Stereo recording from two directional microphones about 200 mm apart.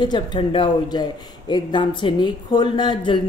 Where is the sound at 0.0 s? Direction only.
20° left (ahead or behind).